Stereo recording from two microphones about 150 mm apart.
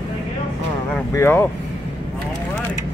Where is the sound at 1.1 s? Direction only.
15° left (ahead or behind).